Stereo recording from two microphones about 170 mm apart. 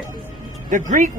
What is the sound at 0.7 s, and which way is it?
Speech, 50° right (ahead or behind).